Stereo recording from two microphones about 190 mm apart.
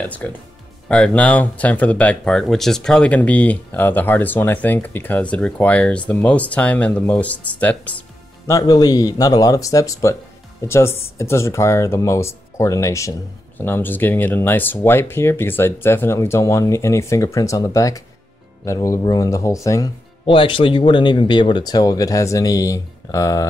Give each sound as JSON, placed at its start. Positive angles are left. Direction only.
{"t": 0.0, "sound": "speech", "side_deg": 10}
{"t": 8.5, "sound": "speech", "side_deg": 20}